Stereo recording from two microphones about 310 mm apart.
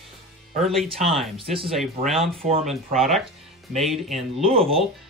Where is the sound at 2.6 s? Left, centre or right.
Centre.